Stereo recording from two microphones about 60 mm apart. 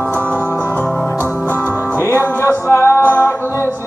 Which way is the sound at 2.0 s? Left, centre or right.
Left.